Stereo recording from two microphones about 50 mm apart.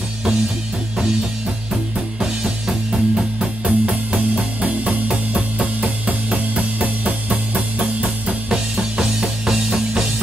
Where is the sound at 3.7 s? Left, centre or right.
Right.